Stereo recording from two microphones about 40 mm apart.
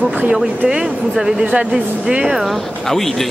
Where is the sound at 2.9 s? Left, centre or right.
Centre.